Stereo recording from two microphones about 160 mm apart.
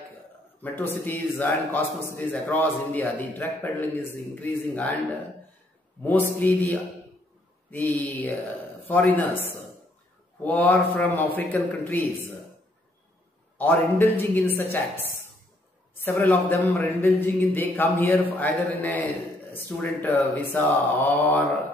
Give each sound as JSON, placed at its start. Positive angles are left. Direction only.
{"t": 0.6, "sound": "a man's voice", "side_deg": 10}
{"t": 6.0, "sound": "a man's voice", "side_deg": 10}
{"t": 10.4, "sound": "a man's voice", "side_deg": 10}
{"t": 13.6, "sound": "a man's voice", "side_deg": 10}